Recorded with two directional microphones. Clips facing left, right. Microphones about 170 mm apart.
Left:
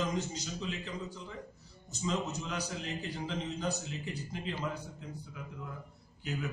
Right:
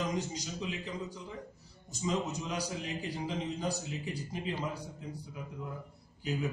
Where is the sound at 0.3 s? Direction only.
10° right (ahead or behind).